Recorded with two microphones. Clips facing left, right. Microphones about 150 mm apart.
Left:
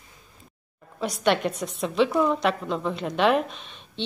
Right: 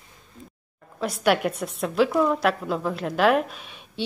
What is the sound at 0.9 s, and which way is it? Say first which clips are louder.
A woman's voice: right 1 dB; centre (ahead or behind).